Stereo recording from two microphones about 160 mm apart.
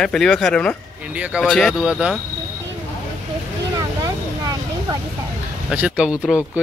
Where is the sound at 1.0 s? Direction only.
5° right (ahead or behind).